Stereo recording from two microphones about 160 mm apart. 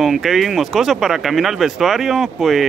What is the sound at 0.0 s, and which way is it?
Speech, centre (ahead or behind).